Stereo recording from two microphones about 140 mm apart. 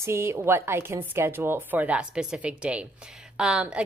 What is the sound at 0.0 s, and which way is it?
A woman's voice, 20° right (ahead or behind).